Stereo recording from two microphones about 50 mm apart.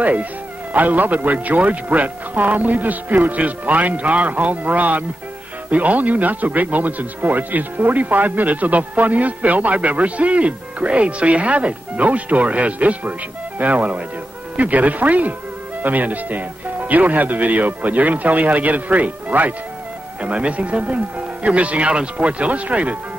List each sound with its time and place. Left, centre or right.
0.0 s speech: right